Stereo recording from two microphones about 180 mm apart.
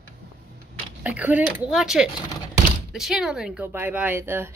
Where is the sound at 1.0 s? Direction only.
10° right (ahead or behind).